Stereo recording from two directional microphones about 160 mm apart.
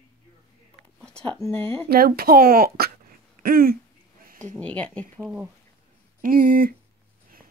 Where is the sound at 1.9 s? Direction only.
70° right (ahead or behind).